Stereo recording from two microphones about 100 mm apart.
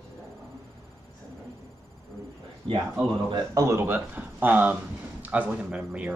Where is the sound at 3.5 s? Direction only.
30° right (ahead or behind).